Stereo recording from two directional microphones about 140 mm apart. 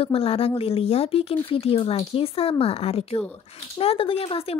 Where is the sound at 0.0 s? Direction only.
45° left (ahead or behind).